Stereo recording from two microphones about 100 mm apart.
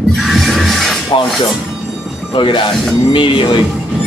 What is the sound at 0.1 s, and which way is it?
Music, centre (ahead or behind).